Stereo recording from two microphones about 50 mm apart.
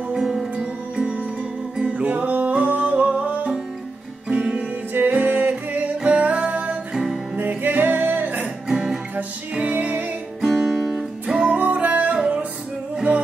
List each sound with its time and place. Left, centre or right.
0.1 s music: centre
1.8 s music: right
7.3 s music: right
8.6 s music: centre
9.1 s music: right
10.4 s music: centre
11.5 s music: right